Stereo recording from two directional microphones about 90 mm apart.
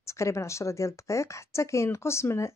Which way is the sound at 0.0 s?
30° left (ahead or behind).